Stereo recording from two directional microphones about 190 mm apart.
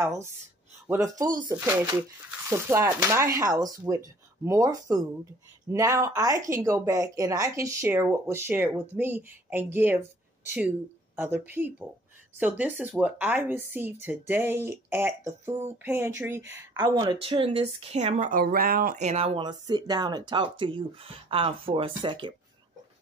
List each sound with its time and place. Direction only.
0.8 s speech: 15° right (ahead or behind)
11.1 s speech: 10° right (ahead or behind)